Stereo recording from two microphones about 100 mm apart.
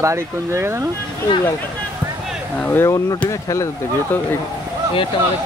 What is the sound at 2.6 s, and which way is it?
Speech, 20° left (ahead or behind).